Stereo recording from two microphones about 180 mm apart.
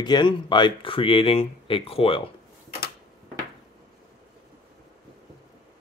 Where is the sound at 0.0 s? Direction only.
25° left (ahead or behind).